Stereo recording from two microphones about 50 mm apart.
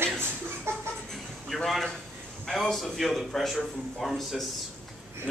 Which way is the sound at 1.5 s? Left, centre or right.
Centre.